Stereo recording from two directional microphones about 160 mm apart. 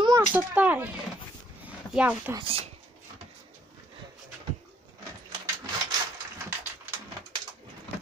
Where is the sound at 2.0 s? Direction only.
10° right (ahead or behind).